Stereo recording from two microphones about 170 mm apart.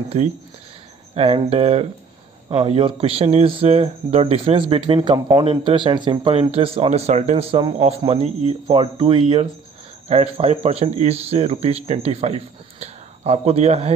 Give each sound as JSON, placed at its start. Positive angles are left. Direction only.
{"t": 1.1, "sound": "speech", "side_deg": -35}